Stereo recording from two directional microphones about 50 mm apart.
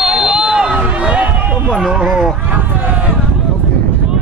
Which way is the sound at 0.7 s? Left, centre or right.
Right.